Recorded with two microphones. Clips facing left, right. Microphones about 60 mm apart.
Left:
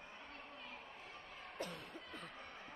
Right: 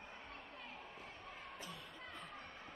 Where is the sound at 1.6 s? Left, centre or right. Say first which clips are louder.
Left 4 dB; left.